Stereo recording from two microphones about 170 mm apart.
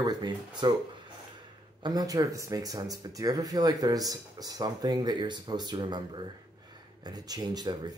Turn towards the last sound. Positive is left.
turn(degrees=-25)  # may be behind; listen again after turning